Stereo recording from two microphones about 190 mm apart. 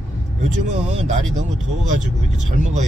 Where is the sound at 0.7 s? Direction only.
35° right (ahead or behind).